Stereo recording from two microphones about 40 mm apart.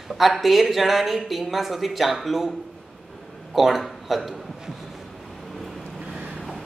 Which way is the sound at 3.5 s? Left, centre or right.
Centre.